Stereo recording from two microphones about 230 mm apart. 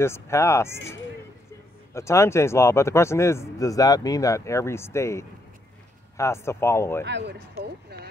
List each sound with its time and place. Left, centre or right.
0.0 s speech: centre
2.0 s speech: centre
7.1 s a sound: right